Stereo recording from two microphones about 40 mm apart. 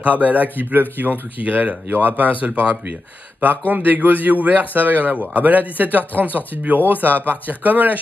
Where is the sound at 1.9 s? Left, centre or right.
Right.